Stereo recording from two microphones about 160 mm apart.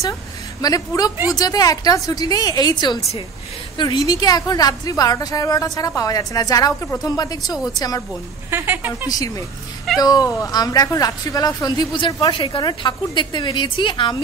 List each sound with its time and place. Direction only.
0.6 s speech: 20° left (ahead or behind)
8.5 s speech: 15° right (ahead or behind)
9.9 s speech: 25° left (ahead or behind)